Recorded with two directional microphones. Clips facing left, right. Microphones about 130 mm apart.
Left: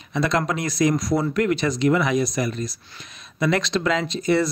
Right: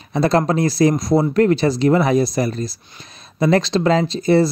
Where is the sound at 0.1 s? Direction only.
35° right (ahead or behind).